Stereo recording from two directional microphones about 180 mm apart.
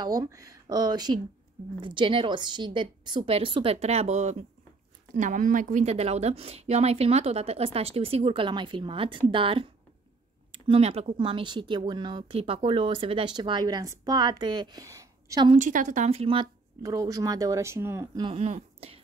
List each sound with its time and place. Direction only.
0.0 s a woman's voice: 20° right (ahead or behind)
15.5 s a woman's voice: 45° right (ahead or behind)
16.8 s speech: 20° right (ahead or behind)
18.2 s speech: 35° right (ahead or behind)